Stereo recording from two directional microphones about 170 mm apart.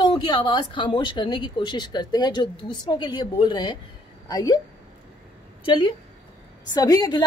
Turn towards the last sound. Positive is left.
turn(degrees=25)  # may be behind; listen again after turning